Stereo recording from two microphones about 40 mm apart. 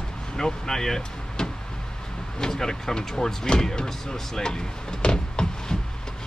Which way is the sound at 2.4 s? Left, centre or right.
Centre.